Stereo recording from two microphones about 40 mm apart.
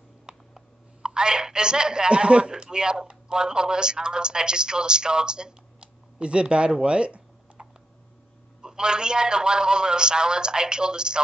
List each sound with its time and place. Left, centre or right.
0.3 s speech: right
8.6 s a man's voice: right